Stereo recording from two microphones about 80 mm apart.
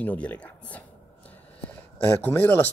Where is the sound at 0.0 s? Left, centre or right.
Centre.